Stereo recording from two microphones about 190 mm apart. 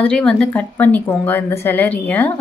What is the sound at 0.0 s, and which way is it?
A woman's voice, 5° left (ahead or behind).